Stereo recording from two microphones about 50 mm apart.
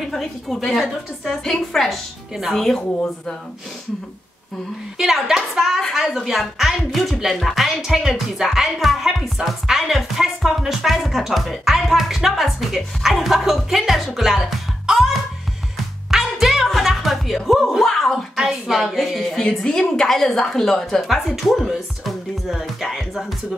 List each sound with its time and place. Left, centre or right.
0.1 s a woman's voice: centre
4.9 s a woman's voice: centre
16.1 s music: centre
18.3 s speech: centre